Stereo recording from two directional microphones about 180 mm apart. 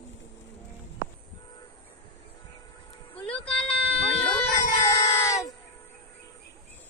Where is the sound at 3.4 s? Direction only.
5° left (ahead or behind).